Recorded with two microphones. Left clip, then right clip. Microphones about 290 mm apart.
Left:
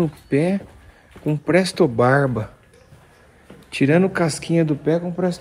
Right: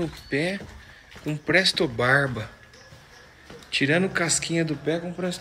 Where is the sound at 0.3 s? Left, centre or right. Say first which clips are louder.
Left 5 dB; centre.